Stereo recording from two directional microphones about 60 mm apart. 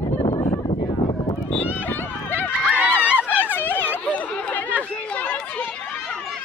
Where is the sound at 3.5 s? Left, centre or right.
Left.